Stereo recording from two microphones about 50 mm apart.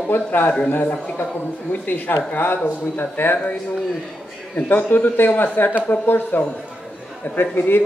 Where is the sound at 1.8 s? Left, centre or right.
Left.